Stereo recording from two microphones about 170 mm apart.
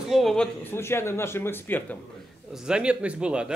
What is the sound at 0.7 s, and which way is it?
Speech, 15° left (ahead or behind).